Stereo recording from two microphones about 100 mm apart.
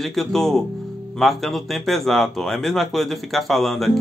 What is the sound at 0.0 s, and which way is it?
Speech, 5° left (ahead or behind).